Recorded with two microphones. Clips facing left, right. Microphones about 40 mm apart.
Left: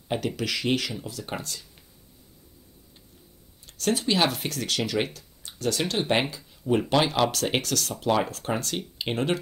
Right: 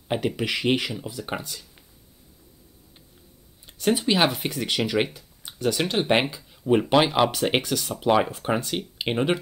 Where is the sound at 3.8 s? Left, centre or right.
Centre.